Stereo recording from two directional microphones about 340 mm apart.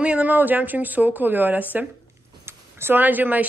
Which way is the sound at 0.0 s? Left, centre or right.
Centre.